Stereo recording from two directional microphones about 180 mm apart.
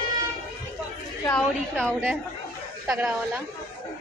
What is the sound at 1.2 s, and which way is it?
A woman's voice, 5° left (ahead or behind).